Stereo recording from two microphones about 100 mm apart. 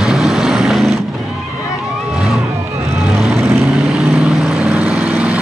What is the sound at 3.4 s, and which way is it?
Vehicle, 25° right (ahead or behind).